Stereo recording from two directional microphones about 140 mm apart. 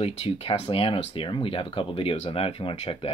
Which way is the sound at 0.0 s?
45° left (ahead or behind).